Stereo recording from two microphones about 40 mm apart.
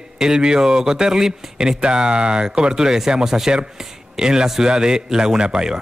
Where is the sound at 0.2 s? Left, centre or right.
Centre.